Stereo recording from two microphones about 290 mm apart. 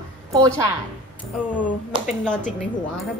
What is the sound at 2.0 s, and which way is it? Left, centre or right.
Speech, centre.